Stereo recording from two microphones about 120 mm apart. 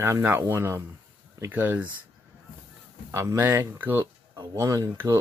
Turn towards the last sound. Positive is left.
turn(degrees=-20)  # may be behind; listen again after turning